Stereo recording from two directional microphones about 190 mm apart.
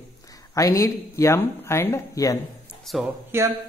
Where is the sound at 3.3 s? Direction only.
10° right (ahead or behind).